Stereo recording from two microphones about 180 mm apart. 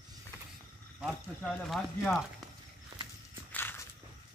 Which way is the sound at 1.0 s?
Centre (ahead or behind).